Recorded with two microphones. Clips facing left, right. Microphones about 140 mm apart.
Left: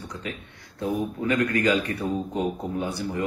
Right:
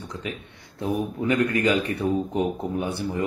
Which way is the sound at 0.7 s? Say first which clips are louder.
Right 1 dB; 20° right (ahead or behind).